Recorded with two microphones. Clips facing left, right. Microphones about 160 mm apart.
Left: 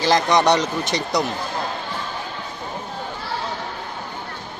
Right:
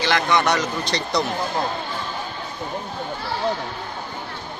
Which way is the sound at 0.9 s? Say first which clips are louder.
Left 2 dB; 15° left (ahead or behind).